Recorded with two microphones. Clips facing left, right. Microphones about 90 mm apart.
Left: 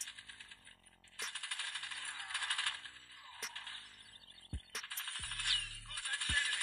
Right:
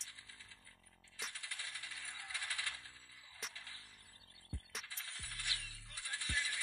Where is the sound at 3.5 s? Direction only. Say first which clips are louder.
Left 4 dB; 60° left (ahead or behind).